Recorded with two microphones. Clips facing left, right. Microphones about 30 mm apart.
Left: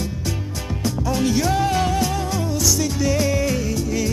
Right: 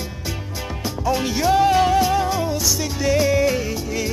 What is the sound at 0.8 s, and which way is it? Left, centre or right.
Music, centre.